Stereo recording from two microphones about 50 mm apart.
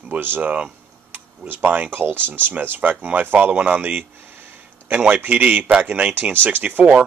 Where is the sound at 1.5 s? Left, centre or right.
Right.